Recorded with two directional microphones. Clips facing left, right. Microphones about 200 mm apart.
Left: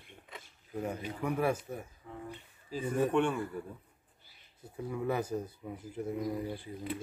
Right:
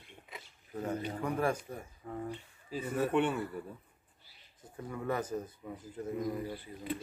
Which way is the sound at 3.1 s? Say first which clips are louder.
Right 2 dB; 5° right (ahead or behind).